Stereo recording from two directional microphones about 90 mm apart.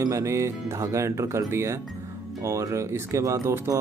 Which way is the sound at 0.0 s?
35° right (ahead or behind).